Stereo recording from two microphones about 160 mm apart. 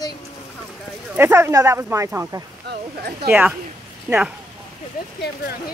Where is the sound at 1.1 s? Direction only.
15° right (ahead or behind).